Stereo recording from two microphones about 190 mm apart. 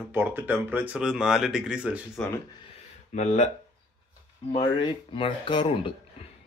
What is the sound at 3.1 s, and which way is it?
Speech, 35° left (ahead or behind).